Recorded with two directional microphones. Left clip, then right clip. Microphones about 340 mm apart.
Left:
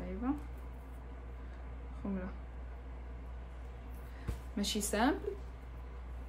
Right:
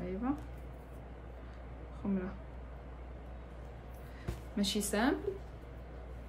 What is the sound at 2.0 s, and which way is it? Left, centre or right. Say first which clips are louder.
Speech: right 4 dB; centre.